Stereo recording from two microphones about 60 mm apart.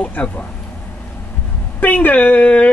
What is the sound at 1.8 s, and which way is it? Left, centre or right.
Speech, left.